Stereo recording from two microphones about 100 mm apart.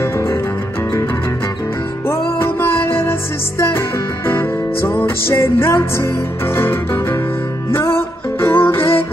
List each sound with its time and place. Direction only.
0.0 s music: 25° left (ahead or behind)
3.0 s music: 25° left (ahead or behind)